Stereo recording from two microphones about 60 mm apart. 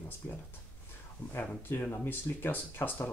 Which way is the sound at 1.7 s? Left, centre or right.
Left.